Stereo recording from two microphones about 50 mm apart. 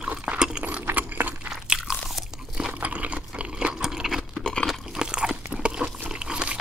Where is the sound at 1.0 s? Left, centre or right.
Right.